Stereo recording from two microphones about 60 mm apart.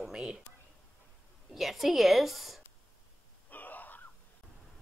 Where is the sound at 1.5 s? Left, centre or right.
Centre.